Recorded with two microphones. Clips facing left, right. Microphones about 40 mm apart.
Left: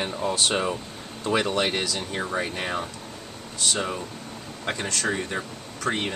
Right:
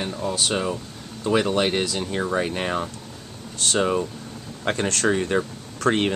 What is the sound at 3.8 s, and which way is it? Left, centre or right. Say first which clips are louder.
Speech: right 7 dB; right.